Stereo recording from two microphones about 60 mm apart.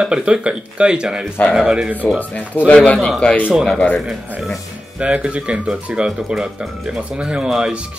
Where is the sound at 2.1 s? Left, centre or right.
Left.